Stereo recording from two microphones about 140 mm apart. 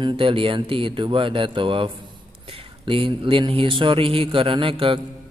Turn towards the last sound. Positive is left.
turn(degrees=-40)  # may be behind; listen again after turning